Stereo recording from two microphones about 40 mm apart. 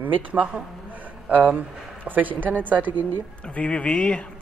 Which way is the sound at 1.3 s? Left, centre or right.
Right.